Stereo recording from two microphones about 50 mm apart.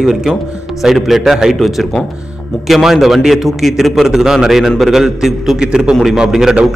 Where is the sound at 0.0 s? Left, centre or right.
Centre.